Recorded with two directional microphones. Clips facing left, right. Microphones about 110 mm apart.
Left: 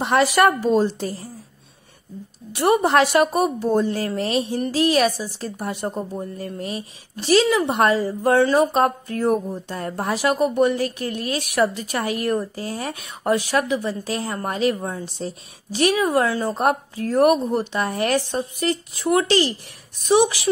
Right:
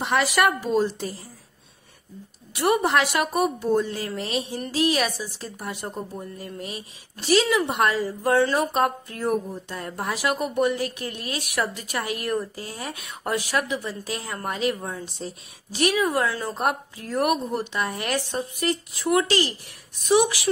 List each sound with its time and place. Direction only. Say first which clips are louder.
0.0 s a woman's voice: left 5 dB; 35° left (ahead or behind)
2.6 s a woman's voice: left 4 dB; 30° left (ahead or behind)